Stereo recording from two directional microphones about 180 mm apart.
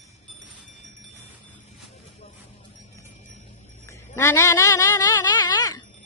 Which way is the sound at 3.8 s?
15° left (ahead or behind).